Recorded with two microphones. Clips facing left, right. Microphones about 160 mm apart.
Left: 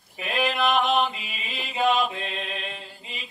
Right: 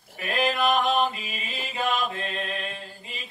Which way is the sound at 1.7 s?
20° left (ahead or behind).